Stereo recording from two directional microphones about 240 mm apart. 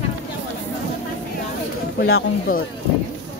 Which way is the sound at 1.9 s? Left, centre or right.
Left.